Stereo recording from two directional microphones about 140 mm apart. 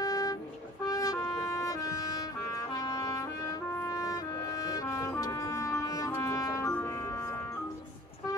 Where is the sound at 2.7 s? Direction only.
25° left (ahead or behind).